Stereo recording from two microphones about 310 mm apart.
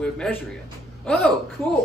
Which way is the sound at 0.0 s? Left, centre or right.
Centre.